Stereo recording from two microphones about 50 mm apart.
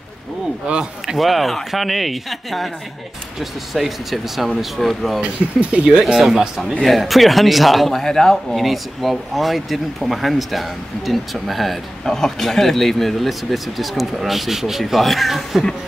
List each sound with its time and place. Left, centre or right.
1.0 s a man's voice: centre
5.2 s speech: right
6.1 s a man's voice: centre